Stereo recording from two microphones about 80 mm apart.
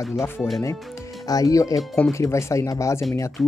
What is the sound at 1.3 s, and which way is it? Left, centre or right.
Speech, left.